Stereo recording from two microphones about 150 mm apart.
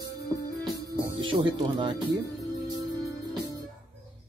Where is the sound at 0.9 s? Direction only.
35° right (ahead or behind).